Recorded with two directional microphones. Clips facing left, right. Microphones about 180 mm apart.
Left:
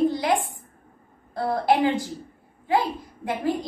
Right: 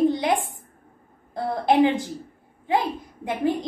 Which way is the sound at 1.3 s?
20° right (ahead or behind).